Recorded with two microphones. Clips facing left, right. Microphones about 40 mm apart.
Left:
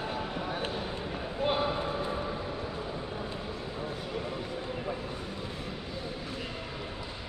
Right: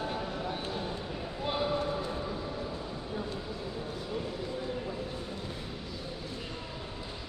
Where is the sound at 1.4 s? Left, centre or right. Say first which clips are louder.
Left 3 dB; left.